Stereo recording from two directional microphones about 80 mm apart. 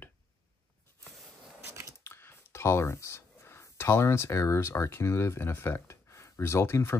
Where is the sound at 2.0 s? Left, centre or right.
Left.